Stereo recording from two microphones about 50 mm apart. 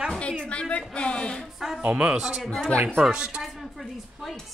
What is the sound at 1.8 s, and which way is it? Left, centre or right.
Speech, right.